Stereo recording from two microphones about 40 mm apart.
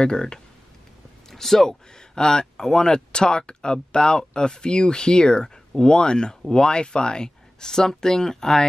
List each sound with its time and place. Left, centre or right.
0.0 s speech: left
1.3 s speech: centre